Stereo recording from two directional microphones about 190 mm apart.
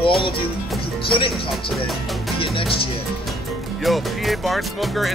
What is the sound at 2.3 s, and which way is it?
Music, 25° left (ahead or behind).